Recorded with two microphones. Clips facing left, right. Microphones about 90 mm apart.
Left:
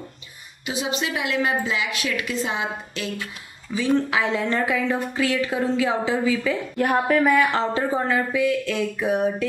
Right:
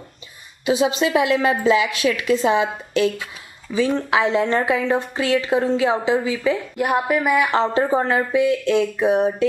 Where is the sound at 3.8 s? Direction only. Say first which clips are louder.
Right 3 dB; 25° right (ahead or behind).